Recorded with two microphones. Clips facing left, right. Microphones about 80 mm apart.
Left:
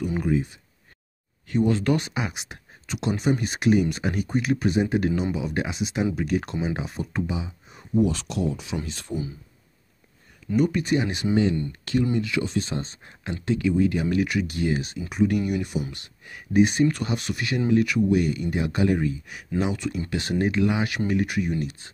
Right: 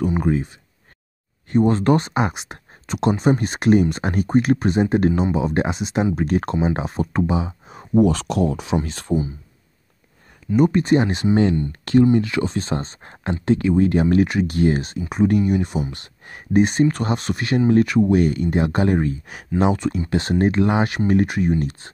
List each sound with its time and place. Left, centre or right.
0.0 s a sound: right
0.3 s speech: right
7.8 s speech: right
10.5 s speech: right
14.0 s speech: right